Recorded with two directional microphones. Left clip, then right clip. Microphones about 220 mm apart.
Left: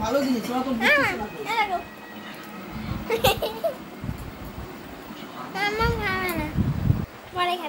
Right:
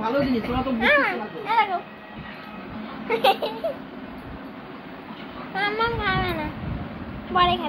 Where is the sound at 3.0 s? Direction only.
15° left (ahead or behind).